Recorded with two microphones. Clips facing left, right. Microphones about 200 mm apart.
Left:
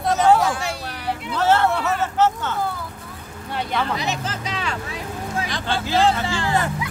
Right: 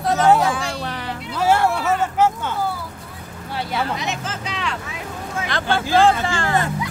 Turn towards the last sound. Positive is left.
turn(degrees=-50)  # may be behind; listen again after turning